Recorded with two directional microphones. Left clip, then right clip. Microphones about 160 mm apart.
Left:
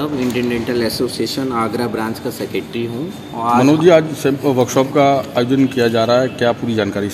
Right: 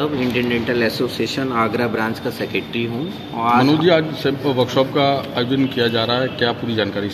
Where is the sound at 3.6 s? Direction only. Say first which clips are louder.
Left 4 dB; 85° left.